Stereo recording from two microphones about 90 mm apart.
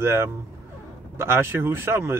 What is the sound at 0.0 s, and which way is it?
Speech, 30° right (ahead or behind).